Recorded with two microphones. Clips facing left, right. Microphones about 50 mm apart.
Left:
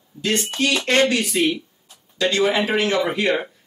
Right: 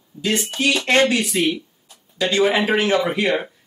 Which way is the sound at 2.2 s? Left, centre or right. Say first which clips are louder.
Right 1 dB; centre.